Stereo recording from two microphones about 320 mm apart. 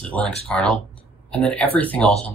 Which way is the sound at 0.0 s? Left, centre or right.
Centre.